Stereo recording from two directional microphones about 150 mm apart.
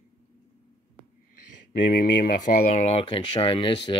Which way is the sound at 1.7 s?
70° left (ahead or behind).